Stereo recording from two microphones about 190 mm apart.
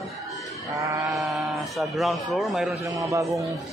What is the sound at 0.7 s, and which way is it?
Speech, 15° right (ahead or behind).